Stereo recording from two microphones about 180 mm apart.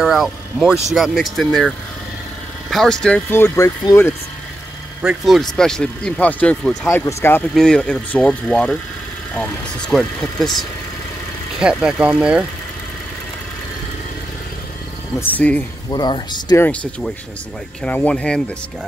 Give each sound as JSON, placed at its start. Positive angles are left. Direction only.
{"t": 0.0, "sound": "speech", "side_deg": 0}
{"t": 2.7, "sound": "speech", "side_deg": 0}
{"t": 5.0, "sound": "speech", "side_deg": 0}
{"t": 7.5, "sound": "speech", "side_deg": 5}
{"t": 11.6, "sound": "speech", "side_deg": -5}
{"t": 15.1, "sound": "speech", "side_deg": 10}
{"t": 15.9, "sound": "speech", "side_deg": 25}
{"t": 16.5, "sound": "speech", "side_deg": 10}